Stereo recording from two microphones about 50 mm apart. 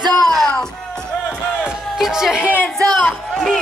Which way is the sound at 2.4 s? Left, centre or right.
Left.